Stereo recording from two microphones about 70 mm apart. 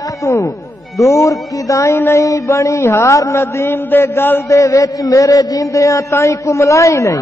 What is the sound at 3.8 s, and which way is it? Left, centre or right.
Speech, left.